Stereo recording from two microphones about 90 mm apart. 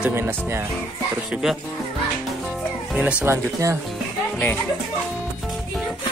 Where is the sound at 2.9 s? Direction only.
15° right (ahead or behind).